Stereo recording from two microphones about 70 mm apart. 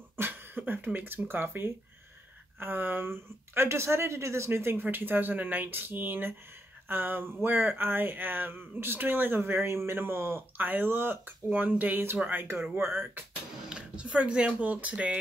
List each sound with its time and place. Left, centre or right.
0.2 s speech: right
13.7 s speech: centre